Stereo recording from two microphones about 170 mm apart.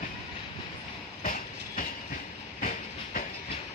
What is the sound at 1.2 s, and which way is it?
Train, 55° left (ahead or behind).